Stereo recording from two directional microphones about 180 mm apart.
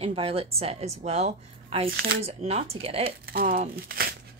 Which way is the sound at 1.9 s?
60° right (ahead or behind).